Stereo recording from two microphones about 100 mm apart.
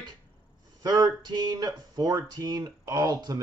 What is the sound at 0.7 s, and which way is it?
Speech, 40° right (ahead or behind).